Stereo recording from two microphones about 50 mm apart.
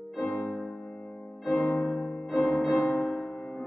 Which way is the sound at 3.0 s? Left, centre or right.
Centre.